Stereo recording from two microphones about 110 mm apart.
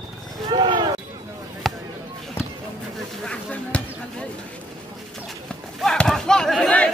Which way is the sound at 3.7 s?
10° left (ahead or behind).